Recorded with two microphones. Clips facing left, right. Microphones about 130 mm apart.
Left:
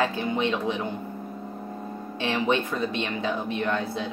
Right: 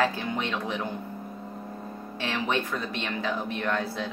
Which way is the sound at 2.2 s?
20° left (ahead or behind).